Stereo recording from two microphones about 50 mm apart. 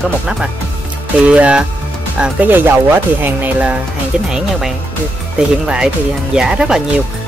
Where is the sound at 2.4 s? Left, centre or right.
Right.